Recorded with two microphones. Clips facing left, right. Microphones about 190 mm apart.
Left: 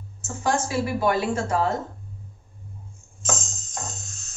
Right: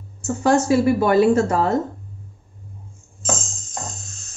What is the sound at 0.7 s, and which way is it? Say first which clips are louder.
Speech: right 7 dB; 45° right (ahead or behind).